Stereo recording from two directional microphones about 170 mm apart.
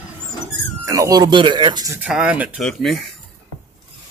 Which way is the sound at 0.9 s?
20° right (ahead or behind).